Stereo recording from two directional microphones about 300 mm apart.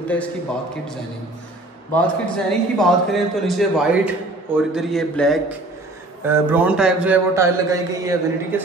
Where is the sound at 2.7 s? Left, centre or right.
Centre.